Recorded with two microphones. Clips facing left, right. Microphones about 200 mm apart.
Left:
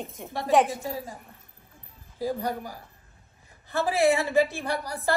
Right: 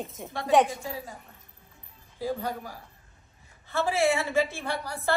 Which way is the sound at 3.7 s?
15° left (ahead or behind).